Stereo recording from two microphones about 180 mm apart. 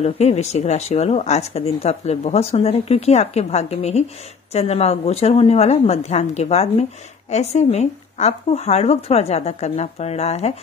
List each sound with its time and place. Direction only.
0.0 s a woman's voice: 35° left (ahead or behind)